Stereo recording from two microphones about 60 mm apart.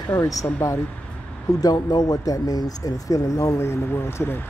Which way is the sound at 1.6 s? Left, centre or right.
Left.